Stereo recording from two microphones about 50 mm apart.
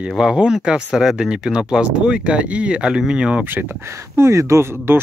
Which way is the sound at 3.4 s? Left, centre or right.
Right.